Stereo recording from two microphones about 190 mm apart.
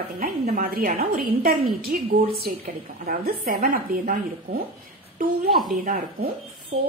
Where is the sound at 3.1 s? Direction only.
50° right (ahead or behind).